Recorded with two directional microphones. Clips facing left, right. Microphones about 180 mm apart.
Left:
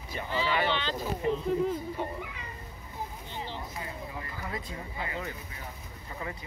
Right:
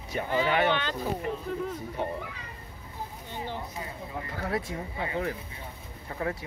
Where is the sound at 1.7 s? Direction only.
65° right (ahead or behind).